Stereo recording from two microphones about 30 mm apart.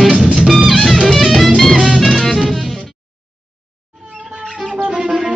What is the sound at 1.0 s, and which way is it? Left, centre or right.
Music, centre.